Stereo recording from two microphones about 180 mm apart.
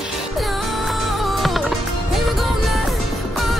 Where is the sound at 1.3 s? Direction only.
Centre (ahead or behind).